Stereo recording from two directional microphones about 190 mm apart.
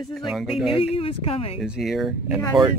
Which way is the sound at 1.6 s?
Centre (ahead or behind).